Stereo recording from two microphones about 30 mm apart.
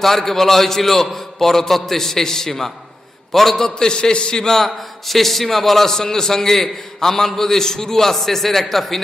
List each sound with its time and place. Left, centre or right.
0.0 s a man's voice: centre
3.9 s a man's voice: left
4.5 s a man's voice: centre